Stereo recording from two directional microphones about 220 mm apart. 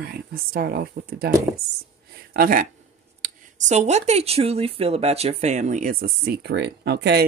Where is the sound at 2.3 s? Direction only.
40° right (ahead or behind).